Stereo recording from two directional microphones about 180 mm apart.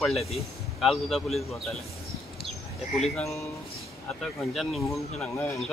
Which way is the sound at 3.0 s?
Centre (ahead or behind).